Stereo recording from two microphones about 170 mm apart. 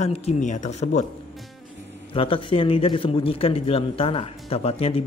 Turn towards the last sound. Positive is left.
turn(degrees=35)  # may be behind; listen again after turning